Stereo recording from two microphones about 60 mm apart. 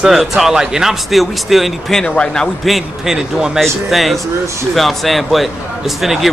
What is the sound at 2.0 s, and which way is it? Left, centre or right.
Speech, centre.